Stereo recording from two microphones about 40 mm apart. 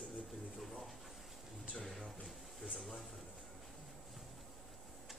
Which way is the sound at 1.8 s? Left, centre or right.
Centre.